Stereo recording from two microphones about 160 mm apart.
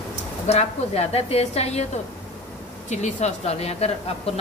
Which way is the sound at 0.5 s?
40° left (ahead or behind).